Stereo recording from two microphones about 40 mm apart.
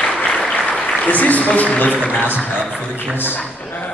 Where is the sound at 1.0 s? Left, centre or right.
Left.